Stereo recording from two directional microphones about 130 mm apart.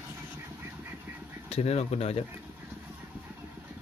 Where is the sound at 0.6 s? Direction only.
20° right (ahead or behind).